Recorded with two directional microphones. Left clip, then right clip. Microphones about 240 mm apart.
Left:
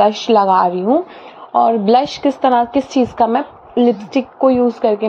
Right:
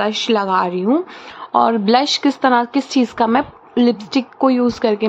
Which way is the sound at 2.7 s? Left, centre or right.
Right.